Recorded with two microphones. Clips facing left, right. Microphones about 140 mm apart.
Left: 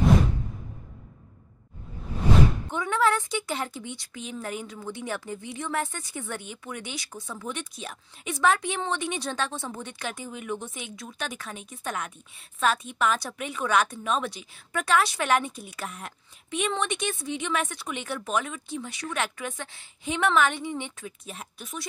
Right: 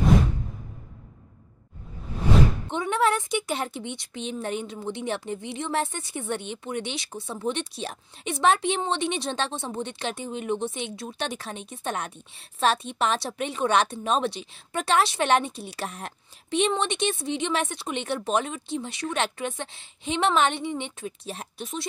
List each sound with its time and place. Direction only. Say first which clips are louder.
2.7 s a woman's voice: right 1 dB; 25° right (ahead or behind)